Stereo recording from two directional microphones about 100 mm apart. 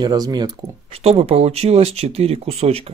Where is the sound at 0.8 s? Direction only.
80° right.